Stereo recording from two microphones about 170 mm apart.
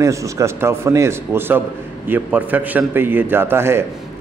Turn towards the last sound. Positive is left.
turn(degrees=-15)  # may be behind; listen again after turning